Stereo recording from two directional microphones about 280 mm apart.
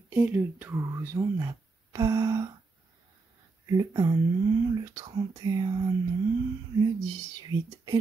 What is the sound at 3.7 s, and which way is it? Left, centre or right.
Speech, centre.